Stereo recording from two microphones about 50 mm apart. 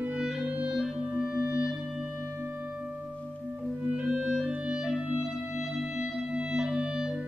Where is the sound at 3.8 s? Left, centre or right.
Right.